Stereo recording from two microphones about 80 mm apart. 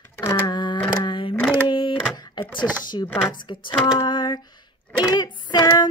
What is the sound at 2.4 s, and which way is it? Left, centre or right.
Chopping, left.